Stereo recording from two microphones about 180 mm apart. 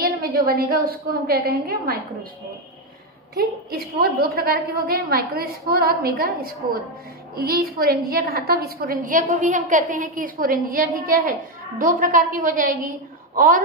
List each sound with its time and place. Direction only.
0.0 s a woman's voice: 55° right (ahead or behind)
3.3 s a woman's voice: 60° right (ahead or behind)